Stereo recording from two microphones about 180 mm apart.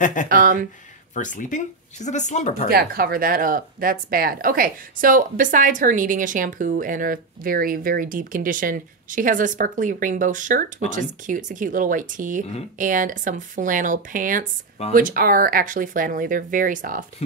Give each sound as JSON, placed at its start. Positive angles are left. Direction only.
{"t": 0.0, "sound": "speech", "side_deg": 45}
{"t": 0.3, "sound": "speech", "side_deg": -50}
{"t": 1.1, "sound": "speech", "side_deg": 45}
{"t": 2.7, "sound": "speech", "side_deg": -55}